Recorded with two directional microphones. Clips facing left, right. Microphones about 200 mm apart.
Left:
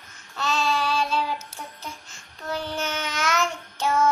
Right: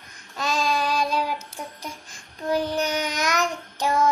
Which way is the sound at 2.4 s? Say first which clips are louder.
Right 6 dB; 15° right (ahead or behind).